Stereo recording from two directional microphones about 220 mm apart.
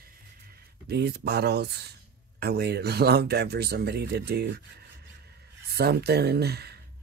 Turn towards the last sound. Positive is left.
turn(degrees=-45)  # may be behind; listen again after turning